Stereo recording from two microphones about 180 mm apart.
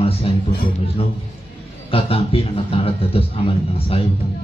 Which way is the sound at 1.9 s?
35° left (ahead or behind).